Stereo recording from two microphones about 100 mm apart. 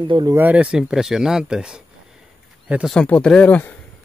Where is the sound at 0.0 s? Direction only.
55° right (ahead or behind).